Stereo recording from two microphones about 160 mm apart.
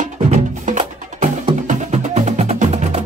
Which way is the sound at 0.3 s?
50° right (ahead or behind).